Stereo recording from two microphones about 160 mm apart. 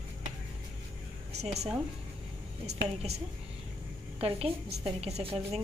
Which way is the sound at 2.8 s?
40° right (ahead or behind).